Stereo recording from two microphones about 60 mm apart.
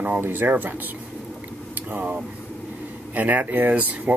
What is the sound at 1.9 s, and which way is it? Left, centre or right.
Speech, right.